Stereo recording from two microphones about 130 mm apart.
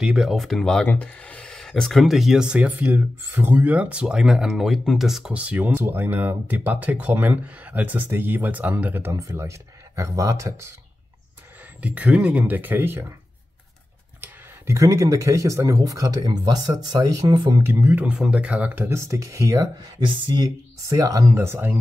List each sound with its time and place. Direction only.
0.0 s speech: 5° right (ahead or behind); by 10.7 s 25° right (ahead or behind)
11.8 s speech: 10° right (ahead or behind)
14.2 s speech: 20° right (ahead or behind)
20.1 s speech: 35° right (ahead or behind); by 21.7 s 15° right (ahead or behind)